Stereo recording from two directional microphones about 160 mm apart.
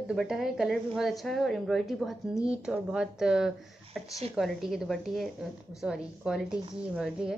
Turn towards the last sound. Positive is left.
turn(degrees=-5)  # may be behind; listen again after turning